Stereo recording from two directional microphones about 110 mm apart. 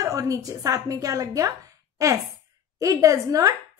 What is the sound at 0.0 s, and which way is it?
Speech, 30° right (ahead or behind).